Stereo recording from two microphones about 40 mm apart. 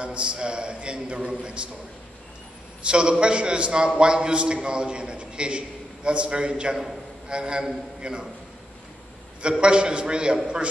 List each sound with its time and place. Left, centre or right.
0.0 s a man's voice: right
2.9 s a man's voice: right
9.4 s a man's voice: right